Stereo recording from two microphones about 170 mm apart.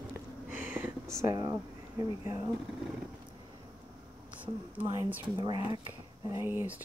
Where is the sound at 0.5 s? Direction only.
10° right (ahead or behind).